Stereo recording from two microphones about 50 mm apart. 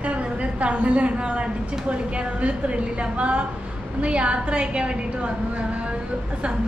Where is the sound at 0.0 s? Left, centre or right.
Right.